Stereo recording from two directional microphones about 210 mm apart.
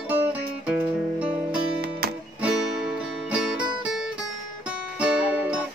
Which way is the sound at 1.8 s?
50° right (ahead or behind).